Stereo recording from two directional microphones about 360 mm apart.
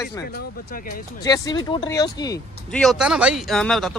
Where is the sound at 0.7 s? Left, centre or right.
Left.